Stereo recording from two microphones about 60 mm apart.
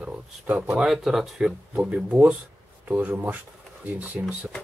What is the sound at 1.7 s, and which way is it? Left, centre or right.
Speech, right.